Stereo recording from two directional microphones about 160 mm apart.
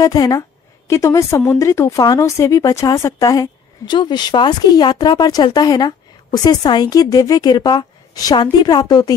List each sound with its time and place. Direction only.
0.0 s speech: 25° left (ahead or behind)